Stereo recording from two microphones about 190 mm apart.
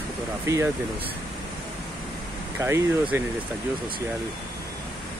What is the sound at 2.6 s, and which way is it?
Speech, 10° right (ahead or behind).